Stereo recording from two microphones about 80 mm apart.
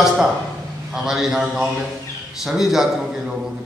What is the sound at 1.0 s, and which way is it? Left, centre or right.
A man's voice, centre.